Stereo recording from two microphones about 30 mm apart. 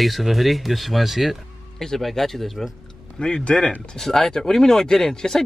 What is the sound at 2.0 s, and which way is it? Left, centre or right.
Speech, centre.